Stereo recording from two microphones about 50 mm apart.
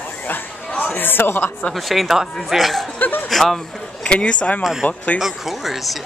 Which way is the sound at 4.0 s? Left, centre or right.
Left.